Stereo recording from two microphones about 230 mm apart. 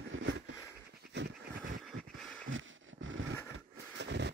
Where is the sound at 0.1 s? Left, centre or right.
Right.